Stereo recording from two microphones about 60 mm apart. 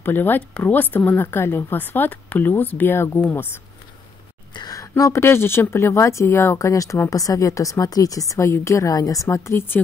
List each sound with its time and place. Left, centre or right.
0.0 s speech: left
3.2 s speech: left
4.6 s a sound: left
5.2 s a woman's voice: left